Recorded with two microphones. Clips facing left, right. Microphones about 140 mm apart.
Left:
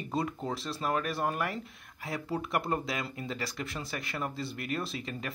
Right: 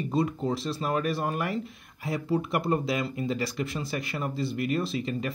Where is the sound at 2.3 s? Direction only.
5° right (ahead or behind).